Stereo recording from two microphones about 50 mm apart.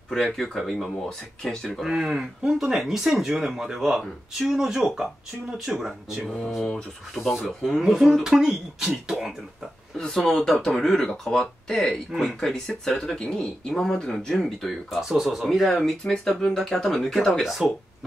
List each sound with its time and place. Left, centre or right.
0.1 s speech: centre
1.9 s speech: centre
6.2 s speech: centre
7.2 s speech: centre
7.4 s speech: centre
7.9 s speech: centre
9.9 s speech: centre
12.1 s speech: centre
12.4 s speech: centre
14.9 s speech: centre
16.0 s speech: centre
17.3 s speech: centre